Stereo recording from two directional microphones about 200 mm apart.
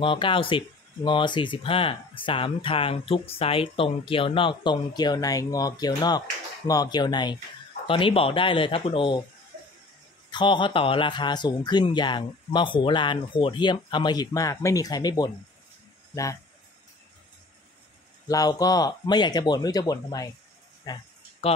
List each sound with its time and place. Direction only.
0.0 s speech: 25° left (ahead or behind)
10.3 s speech: 25° left (ahead or behind)
18.3 s speech: 20° left (ahead or behind)
20.8 s a sound: 25° left (ahead or behind)